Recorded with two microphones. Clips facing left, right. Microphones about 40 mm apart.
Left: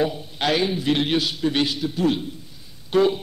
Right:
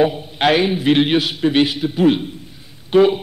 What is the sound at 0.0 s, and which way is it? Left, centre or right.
A man's voice, right.